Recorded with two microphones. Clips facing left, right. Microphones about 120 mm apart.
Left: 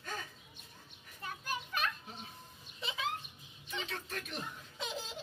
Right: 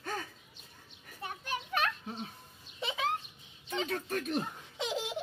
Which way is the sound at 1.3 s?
70° right (ahead or behind).